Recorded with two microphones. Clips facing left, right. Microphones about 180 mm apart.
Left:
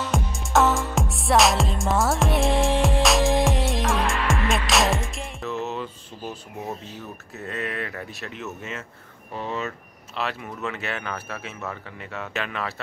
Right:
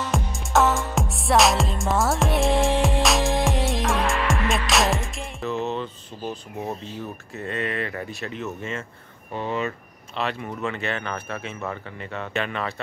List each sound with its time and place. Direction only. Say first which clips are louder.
0.0 s music: even; centre (ahead or behind)
7.3 s speech: right 3 dB; centre (ahead or behind)